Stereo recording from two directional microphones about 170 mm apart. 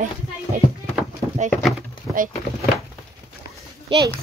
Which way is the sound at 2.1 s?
5° right (ahead or behind).